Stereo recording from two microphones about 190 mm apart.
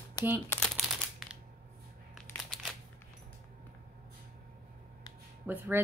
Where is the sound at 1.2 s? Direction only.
Centre (ahead or behind).